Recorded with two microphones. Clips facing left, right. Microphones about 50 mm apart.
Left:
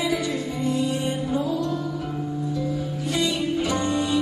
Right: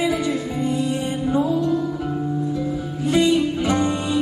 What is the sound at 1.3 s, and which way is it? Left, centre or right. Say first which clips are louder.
Music: right 8 dB; centre.